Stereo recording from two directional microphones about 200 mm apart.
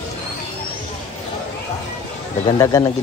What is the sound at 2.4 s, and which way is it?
Speech, 15° left (ahead or behind).